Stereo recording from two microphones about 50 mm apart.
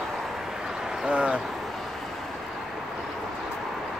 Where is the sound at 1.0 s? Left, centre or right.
Right.